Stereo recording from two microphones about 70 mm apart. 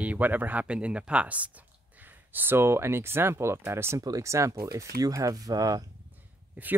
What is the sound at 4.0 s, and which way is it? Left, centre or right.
Speech, right.